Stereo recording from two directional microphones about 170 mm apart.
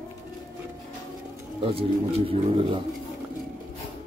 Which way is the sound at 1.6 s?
35° right (ahead or behind).